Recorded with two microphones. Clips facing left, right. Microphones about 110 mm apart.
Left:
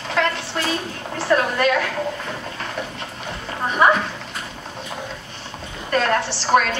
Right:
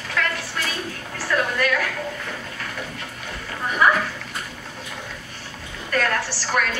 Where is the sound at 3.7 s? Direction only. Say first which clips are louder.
Left 3 dB; 25° left (ahead or behind).